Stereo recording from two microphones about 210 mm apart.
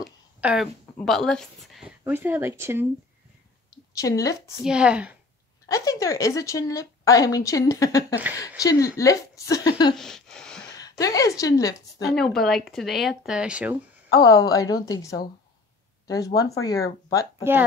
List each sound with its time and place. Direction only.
0.0 s a sound: 5° right (ahead or behind)
0.9 s speech: centre (ahead or behind)
3.9 s a woman's voice: 15° left (ahead or behind)
4.6 s speech: 5° right (ahead or behind)
5.7 s a woman's voice: 15° left (ahead or behind)
9.9 s a sound: centre (ahead or behind)
10.8 s a woman's voice: 15° left (ahead or behind)
12.2 s speech: centre (ahead or behind)
14.1 s a woman's voice: 20° left (ahead or behind)
16.3 s a woman's voice: 15° left (ahead or behind)
17.4 s speech: 10° right (ahead or behind)